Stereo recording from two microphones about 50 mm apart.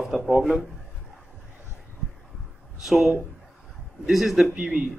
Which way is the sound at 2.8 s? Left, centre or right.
Centre.